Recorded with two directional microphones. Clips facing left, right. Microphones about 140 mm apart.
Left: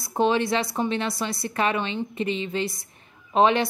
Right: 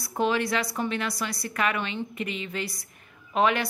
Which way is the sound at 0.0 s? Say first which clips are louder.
Left 4 dB; 25° left (ahead or behind).